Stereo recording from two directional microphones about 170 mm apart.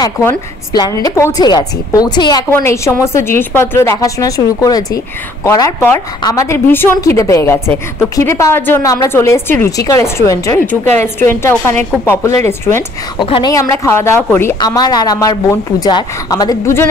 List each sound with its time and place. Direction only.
0.7 s a woman's voice: 20° left (ahead or behind)
13.2 s a woman's voice: 25° left (ahead or behind)